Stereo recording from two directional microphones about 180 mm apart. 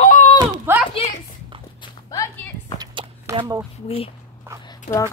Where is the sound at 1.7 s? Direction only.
20° left (ahead or behind).